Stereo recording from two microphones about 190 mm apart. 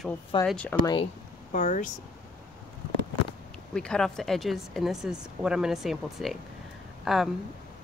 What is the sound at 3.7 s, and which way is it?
Speech, 5° left (ahead or behind).